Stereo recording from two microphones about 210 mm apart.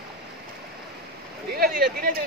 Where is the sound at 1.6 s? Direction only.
45° right (ahead or behind).